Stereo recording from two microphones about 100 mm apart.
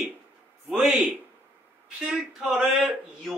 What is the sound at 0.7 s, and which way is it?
A man's voice, 5° right (ahead or behind).